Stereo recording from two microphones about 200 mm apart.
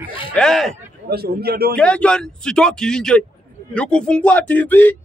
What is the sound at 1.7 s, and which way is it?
Speech, 5° left (ahead or behind).